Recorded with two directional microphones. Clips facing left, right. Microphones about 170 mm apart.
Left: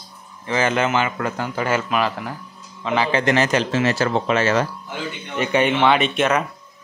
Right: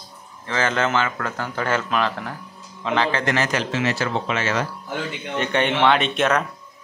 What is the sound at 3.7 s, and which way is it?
Speech, 40° left (ahead or behind).